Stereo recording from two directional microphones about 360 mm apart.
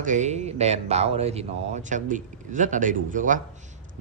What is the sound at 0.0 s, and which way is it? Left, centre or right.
Speech, centre.